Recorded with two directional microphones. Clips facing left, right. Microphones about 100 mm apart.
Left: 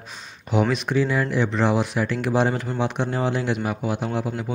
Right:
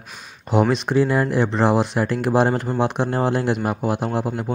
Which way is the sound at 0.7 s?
30° right (ahead or behind).